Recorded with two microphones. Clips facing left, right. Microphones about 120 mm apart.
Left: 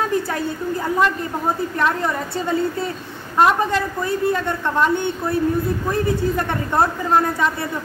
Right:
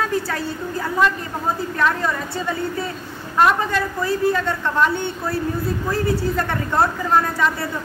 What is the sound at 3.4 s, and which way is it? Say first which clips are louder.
A woman's voice: left 1 dB; 20° left (ahead or behind).